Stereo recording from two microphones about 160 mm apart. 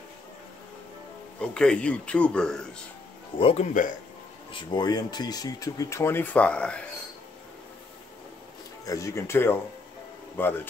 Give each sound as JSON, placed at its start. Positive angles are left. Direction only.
{"t": 1.4, "sound": "speech", "side_deg": 5}
{"t": 3.3, "sound": "speech", "side_deg": 35}
{"t": 8.8, "sound": "speech", "side_deg": 20}